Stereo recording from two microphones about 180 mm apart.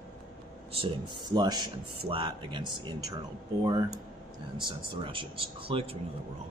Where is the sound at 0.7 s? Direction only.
30° right (ahead or behind).